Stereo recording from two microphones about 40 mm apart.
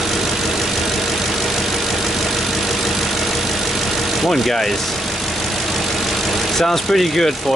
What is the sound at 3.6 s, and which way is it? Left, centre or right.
Vehicle, centre.